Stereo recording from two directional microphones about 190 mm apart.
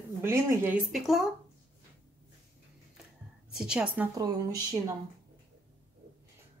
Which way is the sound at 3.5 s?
5° right (ahead or behind).